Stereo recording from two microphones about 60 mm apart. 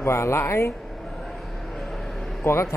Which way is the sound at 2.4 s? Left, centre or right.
Left.